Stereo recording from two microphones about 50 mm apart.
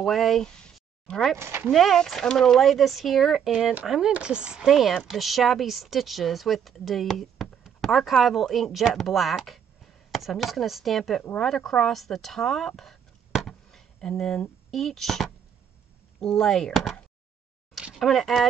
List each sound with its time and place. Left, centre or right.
0.0 s speech: centre
1.0 s speech: centre
1.7 s a woman's voice: centre
4.2 s a woman's voice: centre
4.6 s speech: centre
11.8 s a sound: centre
14.7 s speech: centre
17.9 s speech: centre